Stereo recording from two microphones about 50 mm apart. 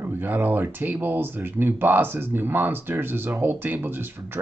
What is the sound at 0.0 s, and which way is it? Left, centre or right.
Speech, right.